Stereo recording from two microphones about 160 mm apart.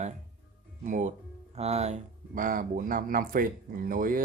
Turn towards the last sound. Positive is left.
turn(degrees=-60)  # may be behind; listen again after turning